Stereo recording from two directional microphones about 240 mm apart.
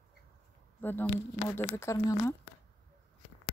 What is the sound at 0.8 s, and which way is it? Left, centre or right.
Speech, centre.